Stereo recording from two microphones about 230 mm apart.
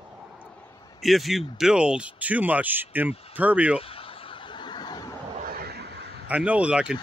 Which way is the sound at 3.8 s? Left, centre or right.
Left.